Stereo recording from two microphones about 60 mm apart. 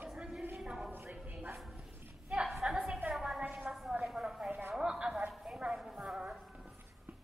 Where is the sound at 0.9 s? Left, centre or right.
Right.